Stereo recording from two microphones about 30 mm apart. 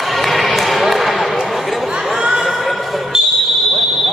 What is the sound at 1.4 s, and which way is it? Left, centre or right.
Chatter, centre.